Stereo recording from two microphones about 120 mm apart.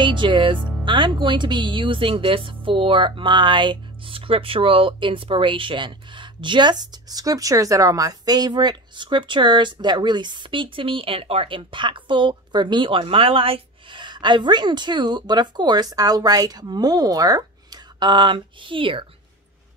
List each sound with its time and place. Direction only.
0.0 s speech: 45° right (ahead or behind)